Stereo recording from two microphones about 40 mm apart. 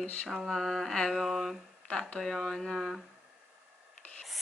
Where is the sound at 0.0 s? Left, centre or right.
Left.